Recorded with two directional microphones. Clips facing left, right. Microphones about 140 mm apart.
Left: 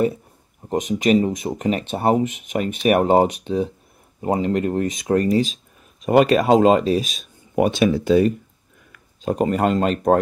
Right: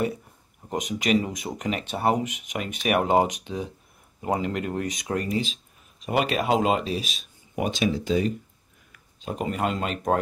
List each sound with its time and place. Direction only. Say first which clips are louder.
0.6 s speech: left 7 dB; 30° left (ahead or behind)
1.0 s speech: left 6 dB; 45° left (ahead or behind)
1.4 s speech: left 7 dB; 30° left (ahead or behind)
2.5 s speech: left 7 dB; 40° left (ahead or behind); by 8.4 s 55° left (ahead or behind)
9.2 s speech: left 8 dB; 45° left (ahead or behind)